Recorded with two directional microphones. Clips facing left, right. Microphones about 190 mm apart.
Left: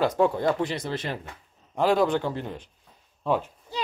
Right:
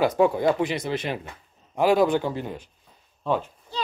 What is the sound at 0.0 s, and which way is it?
Speech, 10° right (ahead or behind).